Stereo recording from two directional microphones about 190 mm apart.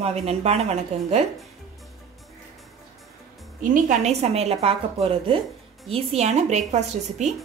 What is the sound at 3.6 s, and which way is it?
A woman's voice, 40° right (ahead or behind).